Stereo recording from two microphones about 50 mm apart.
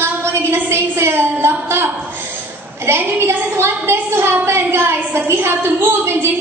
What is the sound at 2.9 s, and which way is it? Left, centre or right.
A woman's voice, right.